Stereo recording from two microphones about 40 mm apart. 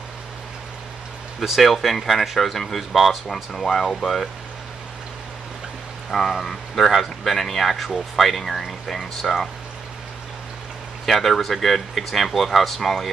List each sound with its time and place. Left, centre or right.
1.6 s speech: centre
6.0 s speech: centre
11.1 s speech: centre